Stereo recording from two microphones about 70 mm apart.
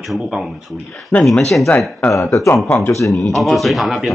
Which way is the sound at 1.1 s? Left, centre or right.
Left.